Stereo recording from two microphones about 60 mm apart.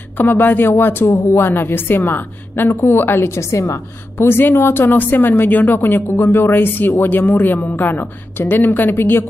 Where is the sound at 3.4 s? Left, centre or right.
Left.